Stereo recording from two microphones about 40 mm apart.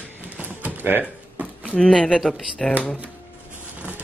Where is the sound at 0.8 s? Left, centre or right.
Right.